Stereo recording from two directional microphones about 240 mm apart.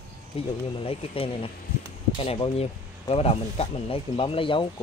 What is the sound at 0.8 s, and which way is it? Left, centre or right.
Speech, left.